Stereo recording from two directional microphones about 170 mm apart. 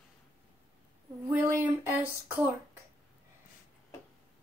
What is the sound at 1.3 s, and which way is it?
Speech, 15° right (ahead or behind).